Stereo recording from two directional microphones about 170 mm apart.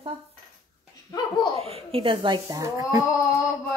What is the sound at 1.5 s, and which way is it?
Speech, 35° right (ahead or behind).